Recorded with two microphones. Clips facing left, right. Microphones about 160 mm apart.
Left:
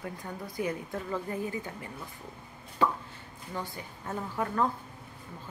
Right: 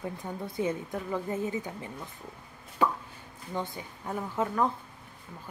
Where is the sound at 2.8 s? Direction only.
10° right (ahead or behind).